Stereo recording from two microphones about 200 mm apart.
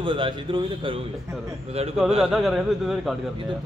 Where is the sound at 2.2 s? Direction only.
Centre (ahead or behind).